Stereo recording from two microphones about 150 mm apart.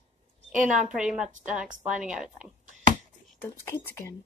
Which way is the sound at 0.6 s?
5° right (ahead or behind).